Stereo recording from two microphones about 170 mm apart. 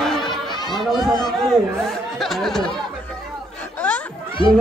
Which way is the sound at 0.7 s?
Centre (ahead or behind).